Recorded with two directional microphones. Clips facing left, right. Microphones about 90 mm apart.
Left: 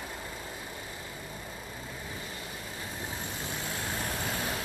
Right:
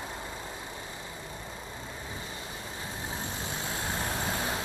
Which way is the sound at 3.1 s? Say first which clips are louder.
Right 1 dB; 25° right (ahead or behind).